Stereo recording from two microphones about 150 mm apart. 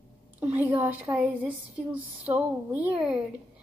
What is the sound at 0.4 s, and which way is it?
Speech, 10° right (ahead or behind).